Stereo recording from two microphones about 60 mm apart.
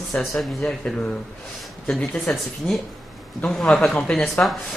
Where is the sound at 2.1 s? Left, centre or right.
Centre.